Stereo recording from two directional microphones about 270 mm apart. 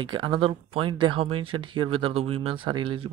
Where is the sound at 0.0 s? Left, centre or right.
Centre.